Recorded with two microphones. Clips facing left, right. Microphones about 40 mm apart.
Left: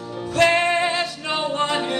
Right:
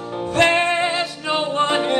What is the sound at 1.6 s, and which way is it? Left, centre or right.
Music, right.